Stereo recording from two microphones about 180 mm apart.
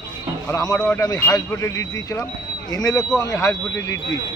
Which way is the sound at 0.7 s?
10° left (ahead or behind).